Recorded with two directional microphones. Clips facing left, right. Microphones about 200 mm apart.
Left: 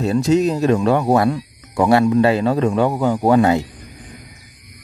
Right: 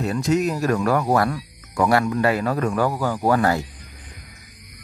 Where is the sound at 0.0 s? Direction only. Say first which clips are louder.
Left 5 dB; 25° left (ahead or behind).